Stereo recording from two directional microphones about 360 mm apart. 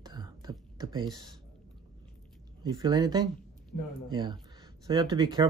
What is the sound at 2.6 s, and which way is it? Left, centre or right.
Speech, centre.